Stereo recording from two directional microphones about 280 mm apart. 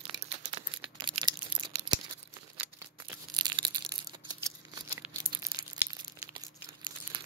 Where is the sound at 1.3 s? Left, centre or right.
Centre.